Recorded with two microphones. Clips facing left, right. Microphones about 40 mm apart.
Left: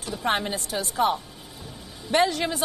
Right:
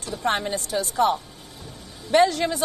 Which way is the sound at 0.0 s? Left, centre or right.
Centre.